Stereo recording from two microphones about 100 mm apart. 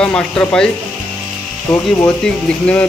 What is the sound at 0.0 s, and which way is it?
Speech, 10° left (ahead or behind).